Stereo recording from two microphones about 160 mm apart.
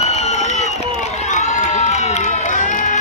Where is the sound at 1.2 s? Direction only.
50° left (ahead or behind).